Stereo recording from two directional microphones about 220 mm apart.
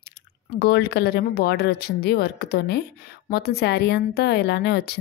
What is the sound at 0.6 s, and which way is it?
Speech, 50° left (ahead or behind).